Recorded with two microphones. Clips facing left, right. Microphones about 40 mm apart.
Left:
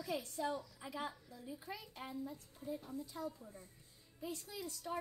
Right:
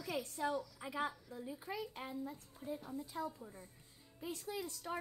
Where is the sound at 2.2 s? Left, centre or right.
Right.